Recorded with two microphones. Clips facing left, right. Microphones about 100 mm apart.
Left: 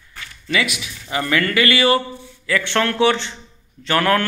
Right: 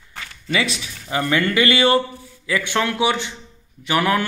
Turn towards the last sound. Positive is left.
turn(degrees=-15)  # may be behind; listen again after turning